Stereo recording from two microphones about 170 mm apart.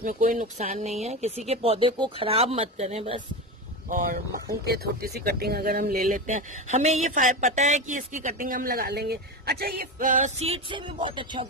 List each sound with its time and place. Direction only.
0.0 s speech: 50° right (ahead or behind)
3.9 s speech: 60° right (ahead or behind)
6.1 s speech: 45° right (ahead or behind); by 11.4 s 30° right (ahead or behind)